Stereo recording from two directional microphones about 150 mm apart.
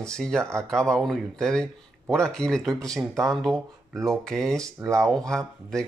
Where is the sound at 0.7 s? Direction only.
5° left (ahead or behind).